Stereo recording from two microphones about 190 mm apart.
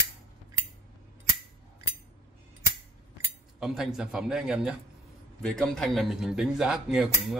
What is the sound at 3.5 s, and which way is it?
A man's voice, 5° right (ahead or behind).